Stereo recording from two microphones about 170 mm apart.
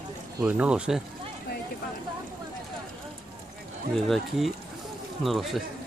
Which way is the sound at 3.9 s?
Centre (ahead or behind).